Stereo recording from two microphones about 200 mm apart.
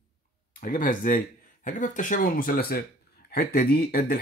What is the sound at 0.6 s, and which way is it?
Speech, 45° left (ahead or behind).